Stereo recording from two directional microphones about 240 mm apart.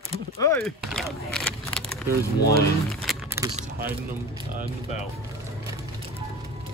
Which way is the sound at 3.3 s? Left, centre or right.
Centre.